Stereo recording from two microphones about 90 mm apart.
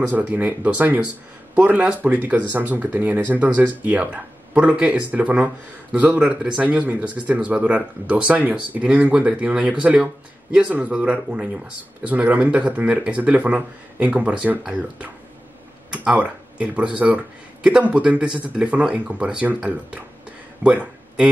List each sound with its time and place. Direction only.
0.1 s speech: 15° right (ahead or behind)